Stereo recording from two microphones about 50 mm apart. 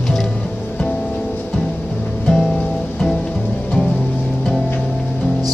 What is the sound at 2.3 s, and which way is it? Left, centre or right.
Music, centre.